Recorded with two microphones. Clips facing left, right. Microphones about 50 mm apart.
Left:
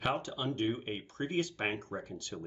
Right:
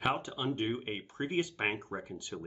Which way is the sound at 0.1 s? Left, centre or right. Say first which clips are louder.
Right 1 dB; centre.